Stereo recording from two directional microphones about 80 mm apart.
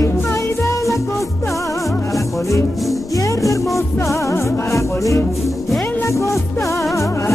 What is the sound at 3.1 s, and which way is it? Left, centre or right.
Music, left.